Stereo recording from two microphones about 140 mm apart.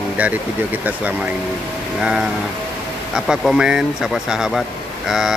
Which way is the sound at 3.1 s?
Centre (ahead or behind).